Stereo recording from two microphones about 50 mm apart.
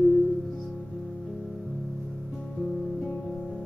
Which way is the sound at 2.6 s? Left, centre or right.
Centre.